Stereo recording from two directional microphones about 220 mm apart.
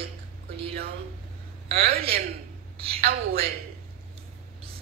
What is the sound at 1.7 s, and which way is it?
A woman's voice, 45° right (ahead or behind).